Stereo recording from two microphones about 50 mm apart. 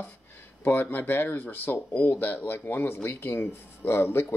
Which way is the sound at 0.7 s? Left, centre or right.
Left.